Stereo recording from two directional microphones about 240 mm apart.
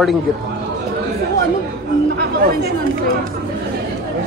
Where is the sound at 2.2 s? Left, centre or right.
Right.